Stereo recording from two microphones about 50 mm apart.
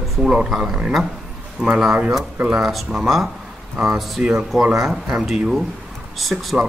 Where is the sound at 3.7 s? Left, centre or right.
Centre.